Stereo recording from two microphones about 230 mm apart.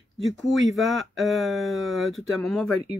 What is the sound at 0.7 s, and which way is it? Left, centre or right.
Speech, centre.